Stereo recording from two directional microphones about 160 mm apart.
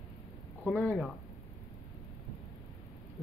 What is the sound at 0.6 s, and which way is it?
Speech, 5° left (ahead or behind).